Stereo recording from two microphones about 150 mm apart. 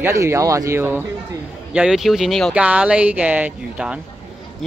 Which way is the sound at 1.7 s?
5° right (ahead or behind).